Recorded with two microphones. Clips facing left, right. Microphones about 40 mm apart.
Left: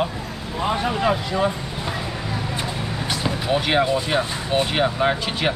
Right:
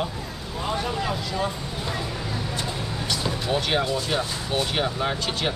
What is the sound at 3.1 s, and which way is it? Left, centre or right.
Speech, centre.